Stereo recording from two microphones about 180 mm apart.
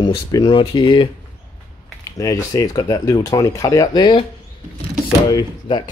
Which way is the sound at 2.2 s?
20° left (ahead or behind).